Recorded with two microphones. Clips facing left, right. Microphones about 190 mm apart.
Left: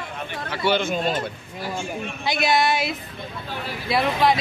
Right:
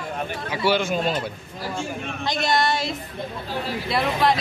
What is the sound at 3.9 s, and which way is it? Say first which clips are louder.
Speech: left 2 dB; centre (ahead or behind).